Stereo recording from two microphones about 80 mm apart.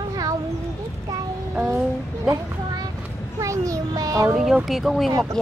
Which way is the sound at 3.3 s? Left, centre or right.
Right.